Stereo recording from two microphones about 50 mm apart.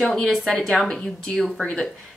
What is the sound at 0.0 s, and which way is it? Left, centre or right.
Speech, centre.